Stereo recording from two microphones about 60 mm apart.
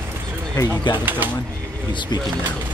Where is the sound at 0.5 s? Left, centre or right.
Left.